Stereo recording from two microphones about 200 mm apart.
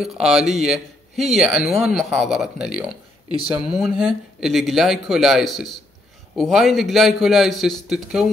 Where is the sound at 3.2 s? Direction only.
30° right (ahead or behind).